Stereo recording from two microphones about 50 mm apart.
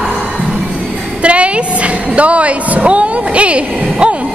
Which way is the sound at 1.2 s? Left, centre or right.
Right.